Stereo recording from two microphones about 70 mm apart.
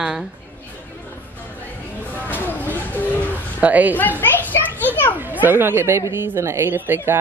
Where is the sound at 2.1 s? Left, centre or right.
Left.